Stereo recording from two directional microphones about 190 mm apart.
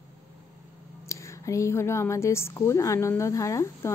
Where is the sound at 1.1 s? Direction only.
15° left (ahead or behind).